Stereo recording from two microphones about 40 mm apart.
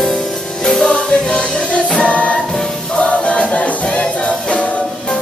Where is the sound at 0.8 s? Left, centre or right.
Left.